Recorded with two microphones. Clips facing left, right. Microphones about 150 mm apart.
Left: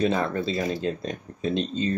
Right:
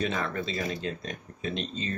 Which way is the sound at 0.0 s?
35° left (ahead or behind).